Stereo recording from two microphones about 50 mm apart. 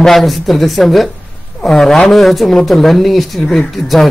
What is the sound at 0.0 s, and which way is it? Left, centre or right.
Speech, centre.